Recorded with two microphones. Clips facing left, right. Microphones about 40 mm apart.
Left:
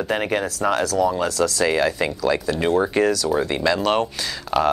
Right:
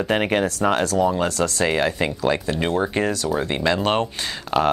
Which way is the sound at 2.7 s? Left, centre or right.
Centre.